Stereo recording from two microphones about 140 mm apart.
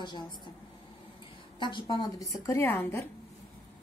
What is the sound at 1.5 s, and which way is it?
Speech, 35° left (ahead or behind).